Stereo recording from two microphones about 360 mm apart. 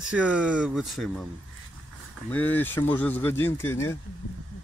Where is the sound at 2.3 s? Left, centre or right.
Centre.